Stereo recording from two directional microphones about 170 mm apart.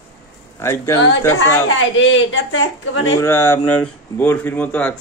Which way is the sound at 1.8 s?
90° left.